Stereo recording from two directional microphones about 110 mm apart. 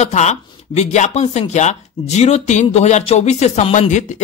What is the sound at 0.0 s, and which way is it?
Speech, 90° left.